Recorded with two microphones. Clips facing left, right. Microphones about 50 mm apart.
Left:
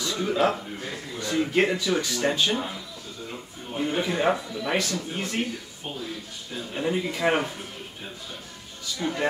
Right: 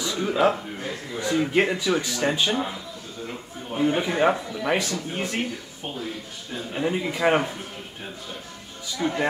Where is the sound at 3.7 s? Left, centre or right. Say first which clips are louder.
Right 3 dB; centre.